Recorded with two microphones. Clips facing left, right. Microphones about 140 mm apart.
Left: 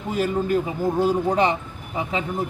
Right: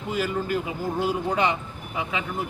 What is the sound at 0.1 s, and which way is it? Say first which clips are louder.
Speech: left 4 dB; 40° left (ahead or behind).